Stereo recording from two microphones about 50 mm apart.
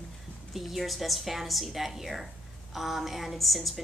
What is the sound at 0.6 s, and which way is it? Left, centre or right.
A woman's voice, centre.